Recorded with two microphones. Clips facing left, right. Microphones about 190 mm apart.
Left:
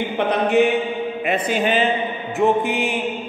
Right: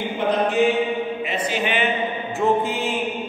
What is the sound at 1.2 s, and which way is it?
Speech, 55° left (ahead or behind).